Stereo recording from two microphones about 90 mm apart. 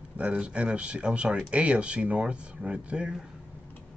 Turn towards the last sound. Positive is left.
turn(degrees=-10)  # may be behind; listen again after turning